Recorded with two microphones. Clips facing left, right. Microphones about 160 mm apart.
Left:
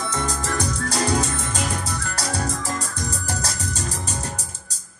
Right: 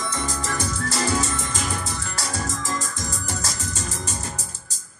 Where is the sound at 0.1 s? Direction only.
50° left (ahead or behind).